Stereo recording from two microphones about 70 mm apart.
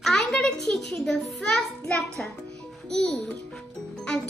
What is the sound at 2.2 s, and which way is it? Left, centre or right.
Speech, centre.